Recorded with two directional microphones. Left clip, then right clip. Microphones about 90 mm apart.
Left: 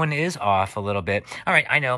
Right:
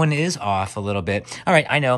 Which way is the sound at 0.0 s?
15° right (ahead or behind).